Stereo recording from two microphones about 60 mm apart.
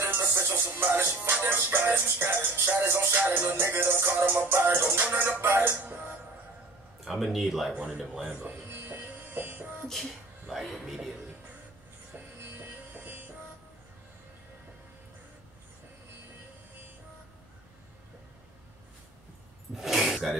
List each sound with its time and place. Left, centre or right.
0.4 s music: right
3.3 s music: right
3.6 s music: right
7.1 s a man's voice: centre
7.7 s speech: centre
8.0 s a man's voice: centre
8.3 s speech: right
8.6 s music: right
10.5 s a man's voice: centre
12.4 s music: right
19.7 s a sound: centre